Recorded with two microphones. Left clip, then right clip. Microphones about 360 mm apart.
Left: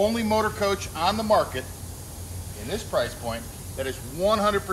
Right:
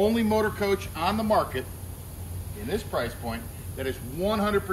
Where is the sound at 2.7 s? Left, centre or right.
Centre.